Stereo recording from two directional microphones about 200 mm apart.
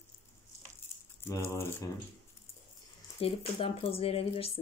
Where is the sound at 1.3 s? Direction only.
15° left (ahead or behind).